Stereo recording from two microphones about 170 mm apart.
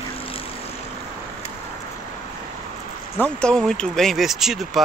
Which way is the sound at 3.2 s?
5° left (ahead or behind).